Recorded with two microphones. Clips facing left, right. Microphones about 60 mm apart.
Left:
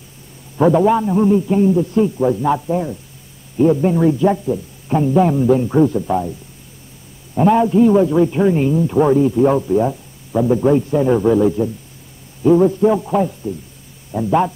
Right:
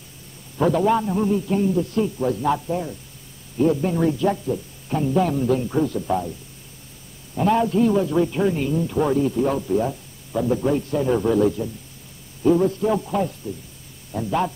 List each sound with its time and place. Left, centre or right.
0.6 s a man's voice: centre
7.4 s a man's voice: centre
9.4 s a man's voice: left